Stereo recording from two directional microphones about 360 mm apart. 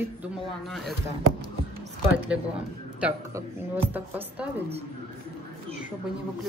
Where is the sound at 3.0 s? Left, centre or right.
Centre.